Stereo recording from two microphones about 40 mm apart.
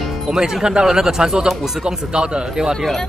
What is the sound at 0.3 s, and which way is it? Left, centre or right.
Speech, centre.